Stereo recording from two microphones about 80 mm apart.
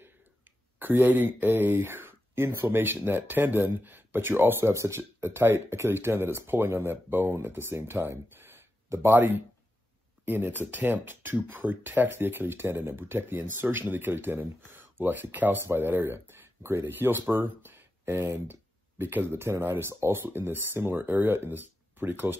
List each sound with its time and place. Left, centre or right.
0.7 s speech: right